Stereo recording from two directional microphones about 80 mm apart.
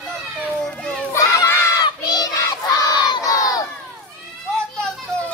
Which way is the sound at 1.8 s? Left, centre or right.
Left.